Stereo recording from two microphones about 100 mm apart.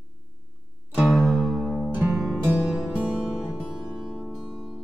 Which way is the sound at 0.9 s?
5° right (ahead or behind).